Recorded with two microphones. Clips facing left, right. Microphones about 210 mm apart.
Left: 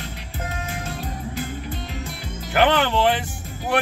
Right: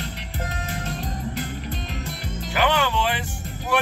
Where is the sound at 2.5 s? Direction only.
60° left (ahead or behind).